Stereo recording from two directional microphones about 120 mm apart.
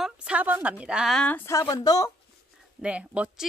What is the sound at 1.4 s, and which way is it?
Speech, 30° left (ahead or behind).